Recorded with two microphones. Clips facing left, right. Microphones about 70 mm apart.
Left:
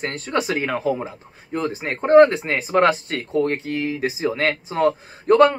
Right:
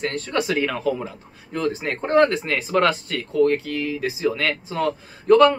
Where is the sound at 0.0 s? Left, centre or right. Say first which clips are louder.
Even; left.